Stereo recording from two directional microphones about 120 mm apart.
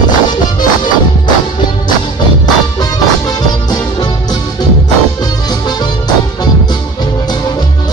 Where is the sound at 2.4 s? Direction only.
35° left (ahead or behind).